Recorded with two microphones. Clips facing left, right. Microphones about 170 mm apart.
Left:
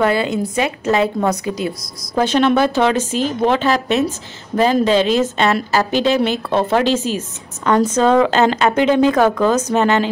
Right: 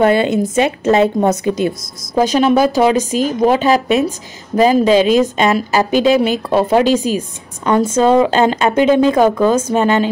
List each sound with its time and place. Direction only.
0.0 s a woman's voice: 25° right (ahead or behind)
2.1 s a woman's voice: 10° right (ahead or behind)